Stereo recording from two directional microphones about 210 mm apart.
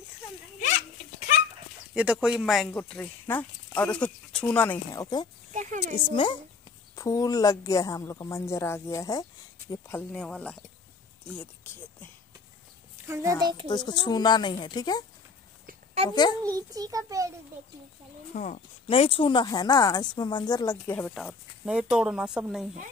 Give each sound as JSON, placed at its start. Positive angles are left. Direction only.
{"t": 2.0, "sound": "speech", "side_deg": -5}
{"t": 5.5, "sound": "speech", "side_deg": -35}
{"t": 7.0, "sound": "speech", "side_deg": 15}
{"t": 13.0, "sound": "a child's voice", "side_deg": -15}
{"t": 13.7, "sound": "a woman's voice", "side_deg": 20}
{"t": 15.6, "sound": "a sound", "side_deg": -30}
{"t": 16.1, "sound": "a woman's voice", "side_deg": 20}
{"t": 16.5, "sound": "a child's voice", "side_deg": -15}
{"t": 18.3, "sound": "speech", "side_deg": 35}